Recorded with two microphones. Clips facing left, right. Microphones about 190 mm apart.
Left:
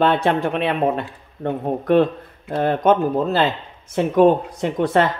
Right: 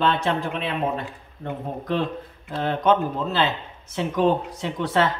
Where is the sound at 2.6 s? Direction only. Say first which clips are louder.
Left 4 dB; 50° left (ahead or behind).